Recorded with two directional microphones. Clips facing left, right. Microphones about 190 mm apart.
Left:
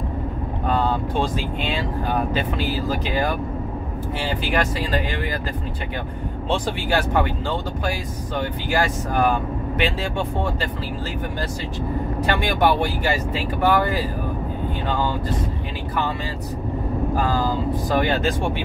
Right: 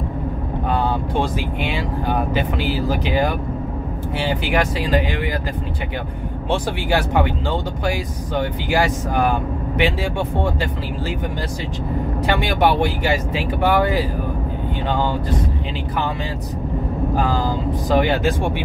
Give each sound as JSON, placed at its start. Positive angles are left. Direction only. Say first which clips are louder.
{"t": 0.7, "sound": "speech", "louder": "even", "side_deg": -15}
{"t": 6.5, "sound": "speech", "louder": "right 2 dB", "side_deg": -15}
{"t": 8.4, "sound": "speech", "louder": "right 3 dB", "side_deg": -15}
{"t": 12.3, "sound": "speech", "louder": "right 2 dB", "side_deg": -15}
{"t": 17.2, "sound": "speech", "louder": "right 1 dB", "side_deg": -15}